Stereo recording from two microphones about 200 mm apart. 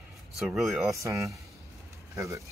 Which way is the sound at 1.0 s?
15° right (ahead or behind).